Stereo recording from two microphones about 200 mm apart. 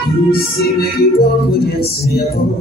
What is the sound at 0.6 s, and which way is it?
Music, 50° left (ahead or behind).